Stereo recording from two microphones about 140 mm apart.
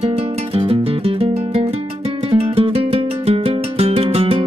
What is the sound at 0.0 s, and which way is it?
Music, 45° right (ahead or behind).